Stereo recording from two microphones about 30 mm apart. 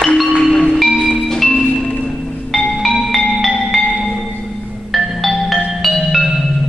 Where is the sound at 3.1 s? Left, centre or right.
Centre.